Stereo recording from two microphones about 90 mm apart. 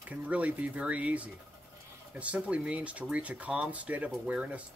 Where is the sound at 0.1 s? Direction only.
15° right (ahead or behind).